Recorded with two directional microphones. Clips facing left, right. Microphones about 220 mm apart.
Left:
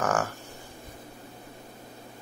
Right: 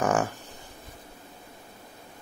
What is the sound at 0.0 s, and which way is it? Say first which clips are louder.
Livestock: right 2 dB; 20° right (ahead or behind).